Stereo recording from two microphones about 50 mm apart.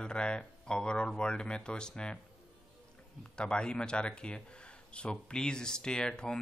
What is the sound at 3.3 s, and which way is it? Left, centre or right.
Speech, centre.